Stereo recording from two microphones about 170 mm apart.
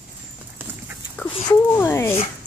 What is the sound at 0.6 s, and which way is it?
Dog, 10° right (ahead or behind).